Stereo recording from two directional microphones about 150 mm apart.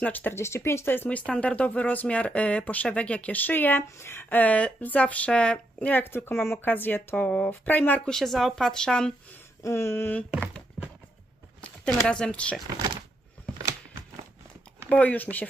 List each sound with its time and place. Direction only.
0.0 s speech: 10° left (ahead or behind)
9.6 s speech: 15° left (ahead or behind)
11.6 s speech: 5° left (ahead or behind)
14.9 s speech: 10° left (ahead or behind)